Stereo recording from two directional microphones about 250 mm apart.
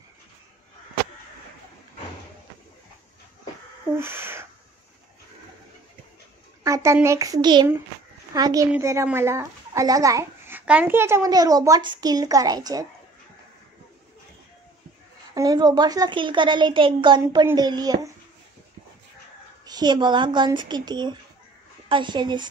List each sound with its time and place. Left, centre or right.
4.0 s a sound: centre
6.6 s a child's voice: centre
15.3 s a child's voice: centre
19.6 s a child's voice: centre